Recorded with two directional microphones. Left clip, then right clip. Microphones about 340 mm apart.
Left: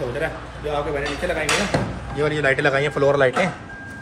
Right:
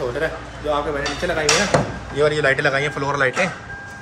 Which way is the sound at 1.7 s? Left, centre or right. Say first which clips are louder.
Right 5 dB; right.